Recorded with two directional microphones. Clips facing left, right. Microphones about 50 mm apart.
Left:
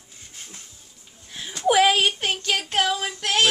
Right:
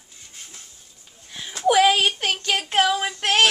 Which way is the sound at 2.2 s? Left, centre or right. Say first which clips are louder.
Right 1 dB; right.